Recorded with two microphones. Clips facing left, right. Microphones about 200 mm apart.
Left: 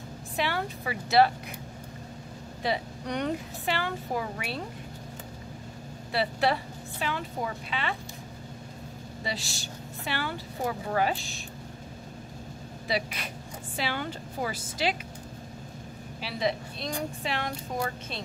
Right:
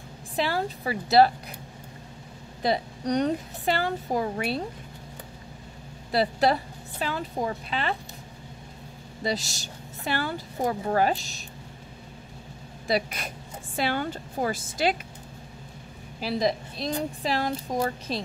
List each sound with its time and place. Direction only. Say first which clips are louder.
0.4 s a woman's voice: right 3 dB; 35° right (ahead or behind)
2.6 s a woman's voice: right 4 dB; 40° right (ahead or behind)
6.1 s a woman's voice: right 4 dB; 40° right (ahead or behind)
9.2 s a woman's voice: right 7 dB; 40° right (ahead or behind)
12.8 s a woman's voice: right 4 dB; 45° right (ahead or behind)
16.2 s a woman's voice: right 4 dB; 40° right (ahead or behind)